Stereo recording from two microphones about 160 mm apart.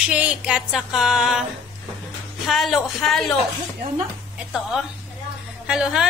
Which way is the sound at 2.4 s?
Centre (ahead or behind).